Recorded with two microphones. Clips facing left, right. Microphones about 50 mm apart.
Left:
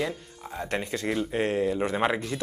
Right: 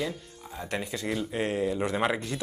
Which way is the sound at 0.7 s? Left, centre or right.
Left.